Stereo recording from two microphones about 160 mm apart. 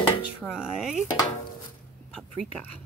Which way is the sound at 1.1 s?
25° left (ahead or behind).